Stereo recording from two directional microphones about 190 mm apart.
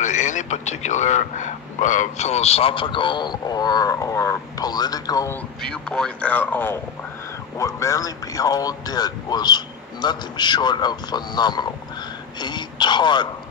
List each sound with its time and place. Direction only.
0.0 s a man's voice: 40° left (ahead or behind); by 5.4 s 20° left (ahead or behind)
5.6 s a man's voice: 5° left (ahead or behind); by 13.3 s 25° left (ahead or behind)